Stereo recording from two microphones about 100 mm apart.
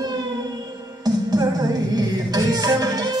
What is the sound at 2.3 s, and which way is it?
Music, 40° right (ahead or behind).